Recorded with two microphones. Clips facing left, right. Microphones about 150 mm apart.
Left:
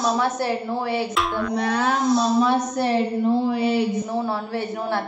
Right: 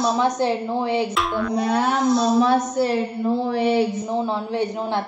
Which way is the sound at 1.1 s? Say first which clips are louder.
Right 1 dB; centre (ahead or behind).